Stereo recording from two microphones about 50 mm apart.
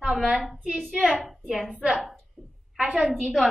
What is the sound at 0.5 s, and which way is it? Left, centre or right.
A woman's voice, centre.